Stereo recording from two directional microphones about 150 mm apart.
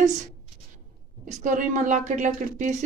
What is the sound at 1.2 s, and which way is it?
Speech, 55° right (ahead or behind).